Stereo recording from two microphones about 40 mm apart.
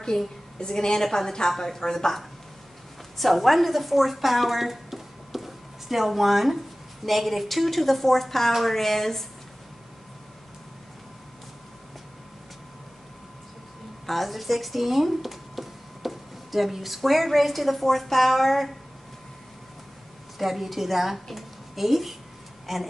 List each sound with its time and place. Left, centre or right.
0.1 s a woman's voice: centre
3.2 s a woman's voice: centre
14.0 s speech: centre
20.3 s a woman's voice: centre